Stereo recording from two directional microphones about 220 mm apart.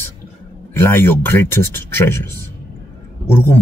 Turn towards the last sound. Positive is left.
turn(degrees=10)  # may be behind; listen again after turning